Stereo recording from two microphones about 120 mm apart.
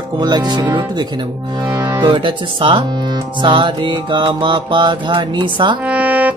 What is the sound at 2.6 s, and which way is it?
Music, 45° right (ahead or behind).